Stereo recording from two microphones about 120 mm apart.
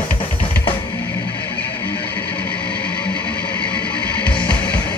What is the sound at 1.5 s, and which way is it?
Music, 15° left (ahead or behind).